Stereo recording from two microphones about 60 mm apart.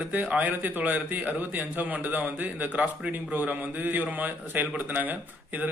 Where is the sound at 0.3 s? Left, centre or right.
Right.